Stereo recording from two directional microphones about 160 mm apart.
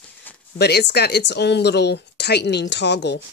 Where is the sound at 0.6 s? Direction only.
90° left.